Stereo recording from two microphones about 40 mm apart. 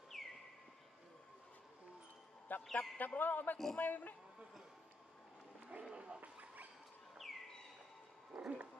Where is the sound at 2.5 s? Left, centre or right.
Left.